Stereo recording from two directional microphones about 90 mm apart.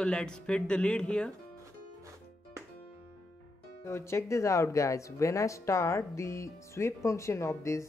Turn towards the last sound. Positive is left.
turn(degrees=35)  # may be behind; listen again after turning